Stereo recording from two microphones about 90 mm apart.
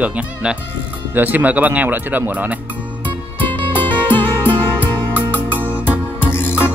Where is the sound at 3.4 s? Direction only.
20° left (ahead or behind).